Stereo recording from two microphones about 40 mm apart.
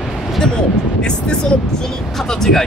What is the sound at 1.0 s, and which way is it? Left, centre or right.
Speech, left.